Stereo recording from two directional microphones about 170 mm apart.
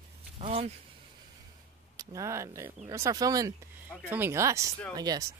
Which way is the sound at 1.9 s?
20° right (ahead or behind).